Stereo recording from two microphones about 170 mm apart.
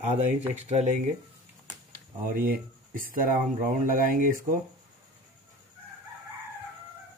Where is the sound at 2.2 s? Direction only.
55° right (ahead or behind).